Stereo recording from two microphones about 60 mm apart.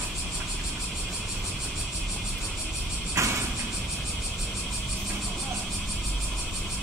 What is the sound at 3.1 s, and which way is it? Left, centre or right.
Music, right.